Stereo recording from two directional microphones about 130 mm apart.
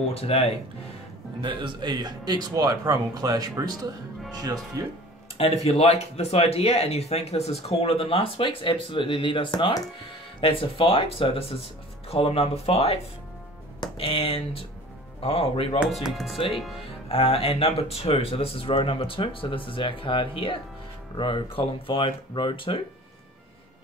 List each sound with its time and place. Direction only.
0.0 s speech: 50° left (ahead or behind)
1.4 s speech: 40° right (ahead or behind)
5.4 s speech: 50° left (ahead or behind)
15.8 s speech: centre (ahead or behind)
17.1 s speech: 45° left (ahead or behind)